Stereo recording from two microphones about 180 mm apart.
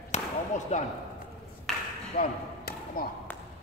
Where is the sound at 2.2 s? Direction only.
55° left (ahead or behind).